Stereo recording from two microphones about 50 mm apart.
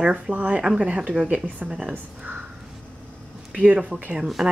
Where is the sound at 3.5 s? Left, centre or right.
Right.